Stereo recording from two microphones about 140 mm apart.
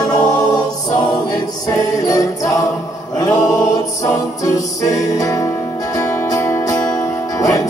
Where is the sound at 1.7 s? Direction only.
25° left (ahead or behind).